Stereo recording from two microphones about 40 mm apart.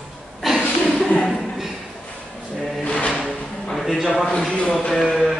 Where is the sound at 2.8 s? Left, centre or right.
Left.